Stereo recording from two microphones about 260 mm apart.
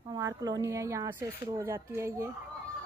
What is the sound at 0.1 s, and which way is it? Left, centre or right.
Speech, centre.